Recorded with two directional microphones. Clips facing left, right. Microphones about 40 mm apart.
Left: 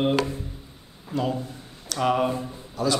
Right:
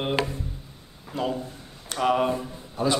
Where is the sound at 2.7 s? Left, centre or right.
Right.